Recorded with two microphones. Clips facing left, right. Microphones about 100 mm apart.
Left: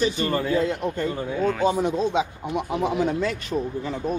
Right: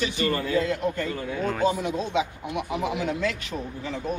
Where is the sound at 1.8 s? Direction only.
35° left (ahead or behind).